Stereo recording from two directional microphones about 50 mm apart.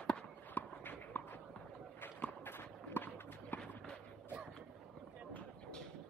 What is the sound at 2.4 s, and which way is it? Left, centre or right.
Walk, left.